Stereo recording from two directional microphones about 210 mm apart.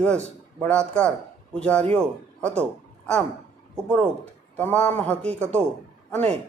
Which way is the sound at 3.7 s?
5° left (ahead or behind).